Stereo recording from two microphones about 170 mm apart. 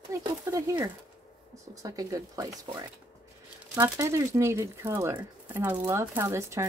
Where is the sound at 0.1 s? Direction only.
20° right (ahead or behind).